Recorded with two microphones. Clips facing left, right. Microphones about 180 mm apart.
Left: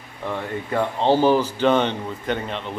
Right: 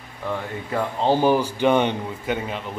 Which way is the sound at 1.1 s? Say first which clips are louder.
Left 1 dB; 15° right (ahead or behind).